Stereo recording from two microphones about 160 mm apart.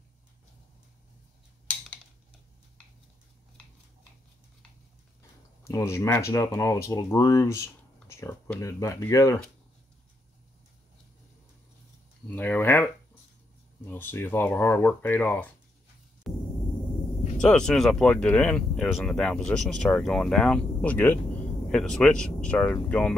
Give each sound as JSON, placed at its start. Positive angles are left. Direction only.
{"t": 5.6, "sound": "speech", "side_deg": 15}
{"t": 12.3, "sound": "speech", "side_deg": 10}
{"t": 16.3, "sound": "a sound", "side_deg": 0}
{"t": 17.4, "sound": "speech", "side_deg": 5}